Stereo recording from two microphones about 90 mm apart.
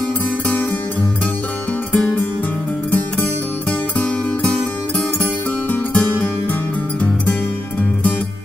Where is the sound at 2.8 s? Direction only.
20° left (ahead or behind).